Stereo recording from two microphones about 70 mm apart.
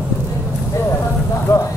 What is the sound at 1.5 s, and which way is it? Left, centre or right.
Vehicle, left.